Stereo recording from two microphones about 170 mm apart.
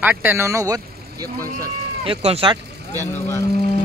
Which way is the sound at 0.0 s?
10° right (ahead or behind).